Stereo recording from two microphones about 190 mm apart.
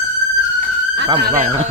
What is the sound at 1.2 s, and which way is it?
Speech, 45° right (ahead or behind).